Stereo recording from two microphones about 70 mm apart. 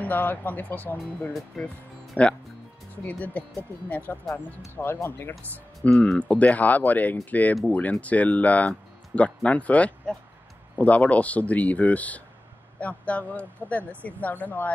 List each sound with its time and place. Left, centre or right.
0.0 s speech: left
1.6 s speech: centre
2.2 s speech: left
5.3 s speech: centre
6.0 s speech: centre